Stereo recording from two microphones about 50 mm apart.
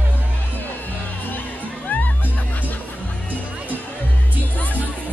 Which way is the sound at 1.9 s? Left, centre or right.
Left.